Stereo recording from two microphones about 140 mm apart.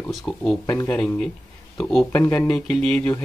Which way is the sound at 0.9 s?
5° left (ahead or behind).